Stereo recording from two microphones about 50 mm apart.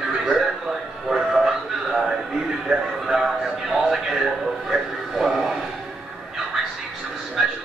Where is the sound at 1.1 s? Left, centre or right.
Centre.